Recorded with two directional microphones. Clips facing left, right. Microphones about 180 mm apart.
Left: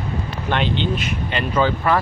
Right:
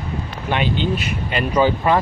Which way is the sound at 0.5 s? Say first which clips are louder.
Right 1 dB; 10° right (ahead or behind).